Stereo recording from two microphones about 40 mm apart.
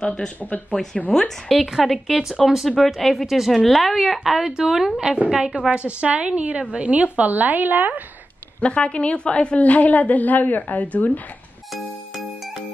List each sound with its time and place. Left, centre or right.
0.0 s speech: centre
0.4 s a woman's voice: left
1.1 s speech: centre
1.8 s a woman's voice: centre
5.7 s a woman's voice: right
6.9 s a woman's voice: right
8.6 s a woman's voice: left